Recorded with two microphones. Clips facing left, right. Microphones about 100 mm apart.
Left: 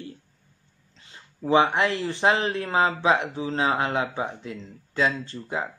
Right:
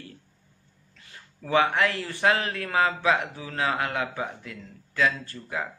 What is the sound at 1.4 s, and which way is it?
A man's voice, 20° left (ahead or behind).